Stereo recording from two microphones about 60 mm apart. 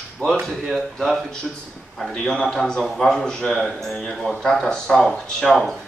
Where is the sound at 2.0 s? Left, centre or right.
Centre.